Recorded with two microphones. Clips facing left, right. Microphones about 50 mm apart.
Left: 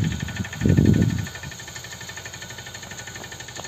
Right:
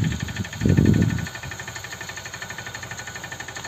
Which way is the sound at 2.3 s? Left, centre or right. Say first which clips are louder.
Right 4 dB; right.